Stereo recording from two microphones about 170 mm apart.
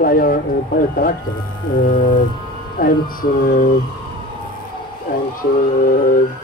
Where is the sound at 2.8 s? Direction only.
55° left (ahead or behind).